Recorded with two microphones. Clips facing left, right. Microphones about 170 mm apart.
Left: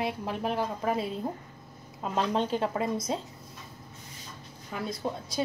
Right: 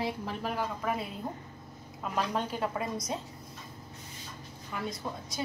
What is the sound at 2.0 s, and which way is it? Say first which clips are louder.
A woman's voice: left 4 dB; 25° left (ahead or behind).